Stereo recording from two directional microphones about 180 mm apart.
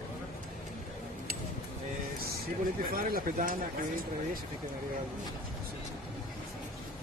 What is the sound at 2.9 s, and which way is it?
Speech, 50° right (ahead or behind).